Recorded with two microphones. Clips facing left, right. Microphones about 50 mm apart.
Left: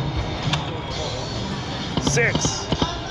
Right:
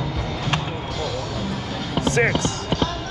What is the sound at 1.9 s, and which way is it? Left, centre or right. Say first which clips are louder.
Music: right 1 dB; centre.